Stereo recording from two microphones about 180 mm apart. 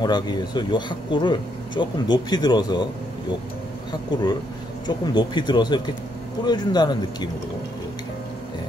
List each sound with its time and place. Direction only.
0.0 s speech: 25° left (ahead or behind)
4.8 s speech: 25° left (ahead or behind)